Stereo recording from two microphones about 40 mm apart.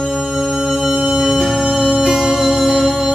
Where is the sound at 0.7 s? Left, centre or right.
Centre.